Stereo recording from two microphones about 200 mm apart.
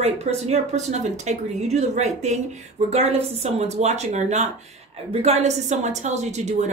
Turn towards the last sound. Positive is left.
turn(degrees=-35)  # may be behind; listen again after turning